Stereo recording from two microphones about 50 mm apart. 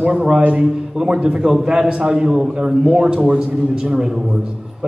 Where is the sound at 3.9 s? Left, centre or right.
Centre.